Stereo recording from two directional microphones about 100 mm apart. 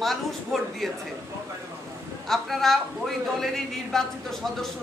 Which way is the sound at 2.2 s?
Centre (ahead or behind).